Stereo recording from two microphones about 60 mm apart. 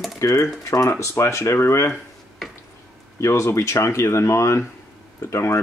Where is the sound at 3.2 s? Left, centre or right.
Left.